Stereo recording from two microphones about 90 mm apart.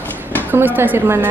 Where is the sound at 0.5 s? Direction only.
25° right (ahead or behind).